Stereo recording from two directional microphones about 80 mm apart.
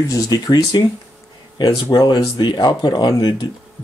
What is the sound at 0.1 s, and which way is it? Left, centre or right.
Speech, left.